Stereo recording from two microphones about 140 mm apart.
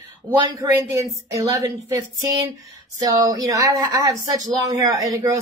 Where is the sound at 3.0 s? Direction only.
25° right (ahead or behind).